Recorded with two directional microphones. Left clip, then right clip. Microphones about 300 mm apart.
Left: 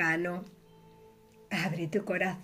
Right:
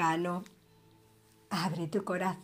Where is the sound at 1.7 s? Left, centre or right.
Right.